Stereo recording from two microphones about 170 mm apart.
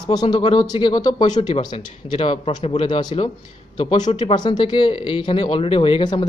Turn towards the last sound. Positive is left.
turn(degrees=30)  # may be behind; listen again after turning